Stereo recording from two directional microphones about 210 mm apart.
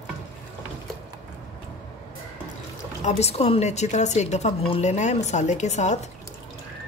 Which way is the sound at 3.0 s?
30° left (ahead or behind).